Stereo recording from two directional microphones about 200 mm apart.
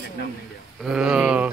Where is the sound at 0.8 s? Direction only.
5° right (ahead or behind).